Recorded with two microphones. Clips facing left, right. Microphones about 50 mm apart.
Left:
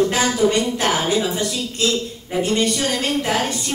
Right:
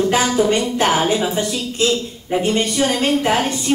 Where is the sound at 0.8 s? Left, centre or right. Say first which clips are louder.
Right 3 dB; right.